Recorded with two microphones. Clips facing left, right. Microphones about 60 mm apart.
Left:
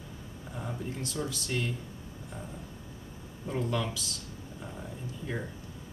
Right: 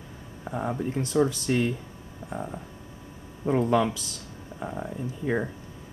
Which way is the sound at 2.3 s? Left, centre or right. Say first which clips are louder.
Right 10 dB; right.